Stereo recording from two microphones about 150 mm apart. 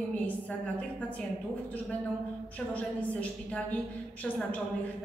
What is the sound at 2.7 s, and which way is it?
A woman's voice, 10° left (ahead or behind).